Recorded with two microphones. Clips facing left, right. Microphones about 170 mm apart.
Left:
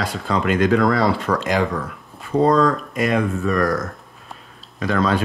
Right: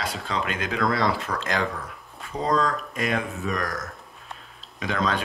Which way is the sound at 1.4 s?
5° left (ahead or behind).